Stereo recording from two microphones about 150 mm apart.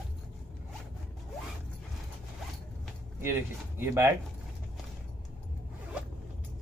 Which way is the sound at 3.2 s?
15° right (ahead or behind).